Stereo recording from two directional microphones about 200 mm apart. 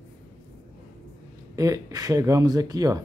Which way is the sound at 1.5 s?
15° right (ahead or behind).